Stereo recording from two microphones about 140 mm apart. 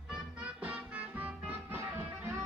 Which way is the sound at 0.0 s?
5° right (ahead or behind).